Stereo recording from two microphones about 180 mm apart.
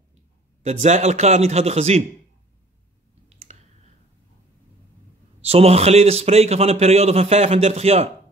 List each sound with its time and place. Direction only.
0.7 s a man's voice: 40° right (ahead or behind)
3.5 s a sound: 40° right (ahead or behind)
5.4 s a man's voice: 35° right (ahead or behind)